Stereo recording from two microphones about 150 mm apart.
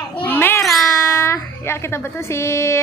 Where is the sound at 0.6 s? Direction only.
Centre (ahead or behind).